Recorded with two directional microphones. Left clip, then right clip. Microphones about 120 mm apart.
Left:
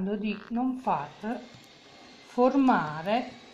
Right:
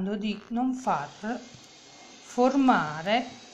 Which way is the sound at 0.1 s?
15° right (ahead or behind).